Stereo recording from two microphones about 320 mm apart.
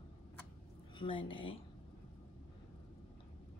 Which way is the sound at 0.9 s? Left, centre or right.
Centre.